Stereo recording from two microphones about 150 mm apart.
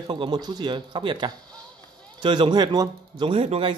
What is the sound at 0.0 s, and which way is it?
Speech, 30° right (ahead or behind).